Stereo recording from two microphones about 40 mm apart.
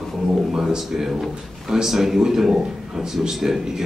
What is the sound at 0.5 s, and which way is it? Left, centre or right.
A man's voice, centre.